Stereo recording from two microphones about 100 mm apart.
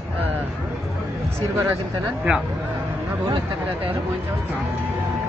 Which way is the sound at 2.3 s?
10° right (ahead or behind).